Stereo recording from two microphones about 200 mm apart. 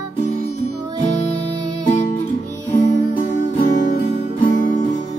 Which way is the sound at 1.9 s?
35° left (ahead or behind).